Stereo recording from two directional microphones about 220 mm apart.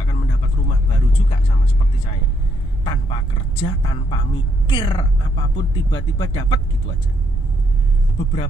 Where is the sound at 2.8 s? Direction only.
25° left (ahead or behind).